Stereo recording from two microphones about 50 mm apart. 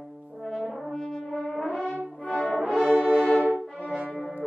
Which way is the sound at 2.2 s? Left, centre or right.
Centre.